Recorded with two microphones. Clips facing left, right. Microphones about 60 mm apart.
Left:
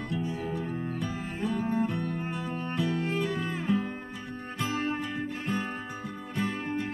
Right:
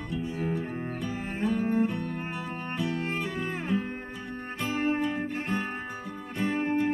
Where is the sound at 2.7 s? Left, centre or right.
Centre.